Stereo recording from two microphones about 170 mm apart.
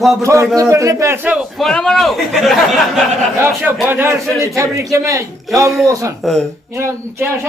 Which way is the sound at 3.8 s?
15° right (ahead or behind).